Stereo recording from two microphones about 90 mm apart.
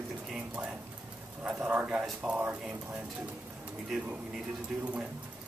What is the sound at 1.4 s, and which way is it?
A man's voice, 15° right (ahead or behind).